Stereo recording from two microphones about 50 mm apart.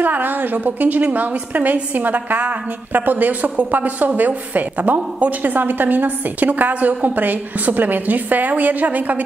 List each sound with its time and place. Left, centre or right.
0.0 s a woman's voice: right